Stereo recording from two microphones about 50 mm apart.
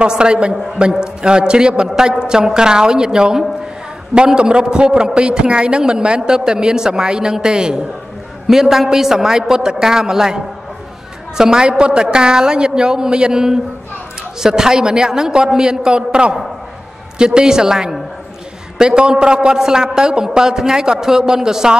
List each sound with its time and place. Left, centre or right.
0.0 s a man's voice: centre